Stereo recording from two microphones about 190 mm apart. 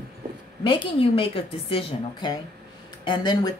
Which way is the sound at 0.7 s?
25° left (ahead or behind).